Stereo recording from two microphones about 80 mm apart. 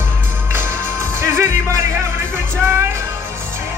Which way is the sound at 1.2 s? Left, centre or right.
Right.